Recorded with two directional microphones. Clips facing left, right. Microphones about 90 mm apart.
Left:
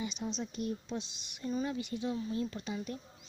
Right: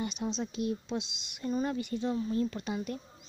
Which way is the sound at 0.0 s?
55° right (ahead or behind).